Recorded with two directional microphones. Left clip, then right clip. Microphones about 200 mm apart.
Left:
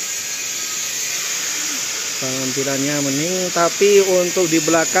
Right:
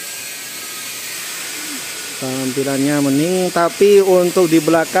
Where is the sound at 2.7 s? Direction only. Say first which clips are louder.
Right 6 dB; 20° right (ahead or behind).